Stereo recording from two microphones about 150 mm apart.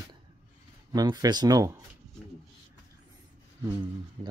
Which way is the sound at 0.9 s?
25° right (ahead or behind).